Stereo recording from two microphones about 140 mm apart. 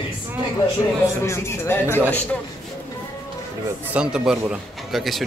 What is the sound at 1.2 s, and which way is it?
Speech, 20° left (ahead or behind).